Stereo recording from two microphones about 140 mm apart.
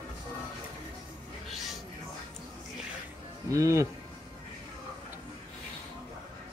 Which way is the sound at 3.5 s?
20° right (ahead or behind).